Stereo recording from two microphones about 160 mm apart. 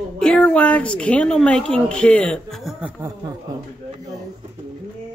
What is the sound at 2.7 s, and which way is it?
Speech, 10° right (ahead or behind).